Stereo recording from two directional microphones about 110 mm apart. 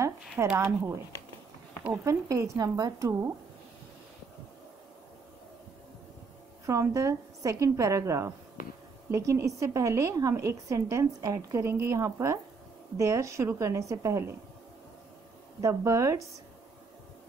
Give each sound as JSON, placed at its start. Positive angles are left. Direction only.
{"t": 0.6, "sound": "a woman's voice", "side_deg": -25}
{"t": 6.6, "sound": "a woman's voice", "side_deg": -30}
{"t": 15.6, "sound": "a woman's voice", "side_deg": -25}